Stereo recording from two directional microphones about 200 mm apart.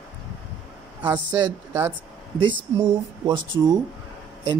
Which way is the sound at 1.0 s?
20° right (ahead or behind).